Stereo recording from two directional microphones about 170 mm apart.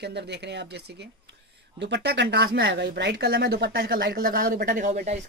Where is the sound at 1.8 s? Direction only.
90° right; by 5.2 s 45° right (ahead or behind).